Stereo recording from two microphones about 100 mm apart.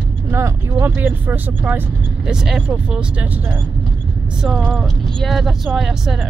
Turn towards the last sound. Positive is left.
turn(degrees=-5)  # may be behind; listen again after turning